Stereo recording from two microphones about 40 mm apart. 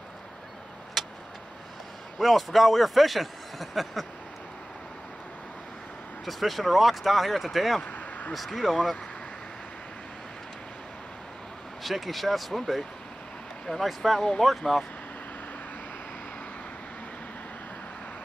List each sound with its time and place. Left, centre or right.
1.0 s vehicle: centre
2.1 s a man's voice: centre
6.2 s a man's voice: centre
11.8 s a man's voice: centre
13.8 s a man's voice: centre